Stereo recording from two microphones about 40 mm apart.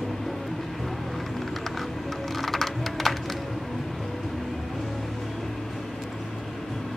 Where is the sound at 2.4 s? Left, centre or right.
Centre.